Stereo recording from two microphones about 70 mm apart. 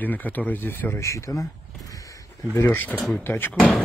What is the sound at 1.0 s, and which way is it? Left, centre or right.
Speech, left.